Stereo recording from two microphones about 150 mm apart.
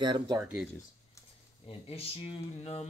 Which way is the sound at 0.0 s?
30° right (ahead or behind).